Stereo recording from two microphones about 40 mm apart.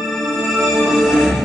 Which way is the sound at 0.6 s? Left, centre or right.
Centre.